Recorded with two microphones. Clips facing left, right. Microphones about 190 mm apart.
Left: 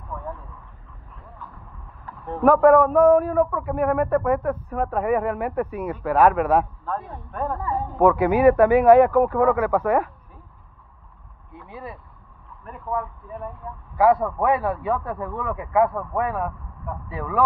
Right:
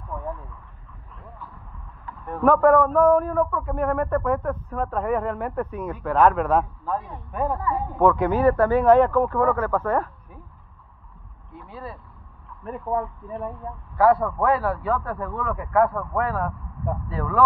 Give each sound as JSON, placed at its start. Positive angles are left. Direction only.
{"t": 2.4, "sound": "speech", "side_deg": 5}
{"t": 6.9, "sound": "speech", "side_deg": -10}
{"t": 8.0, "sound": "speech", "side_deg": 10}
{"t": 11.5, "sound": "speech", "side_deg": 20}
{"t": 13.9, "sound": "speech", "side_deg": 15}